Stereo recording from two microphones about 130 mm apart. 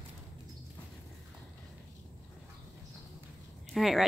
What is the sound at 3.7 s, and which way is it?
Speech, centre (ahead or behind).